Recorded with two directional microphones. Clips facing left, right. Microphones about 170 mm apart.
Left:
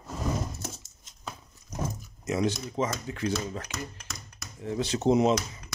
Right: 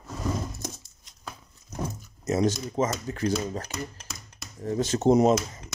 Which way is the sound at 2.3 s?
40° right (ahead or behind).